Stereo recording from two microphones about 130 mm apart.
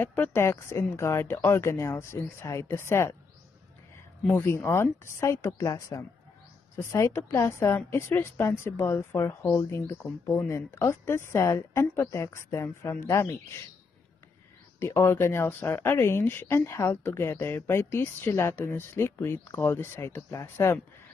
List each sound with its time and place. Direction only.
0.0 s a woman's voice: 15° left (ahead or behind)
4.4 s a woman's voice: 20° left (ahead or behind)
14.8 s speech: 20° left (ahead or behind)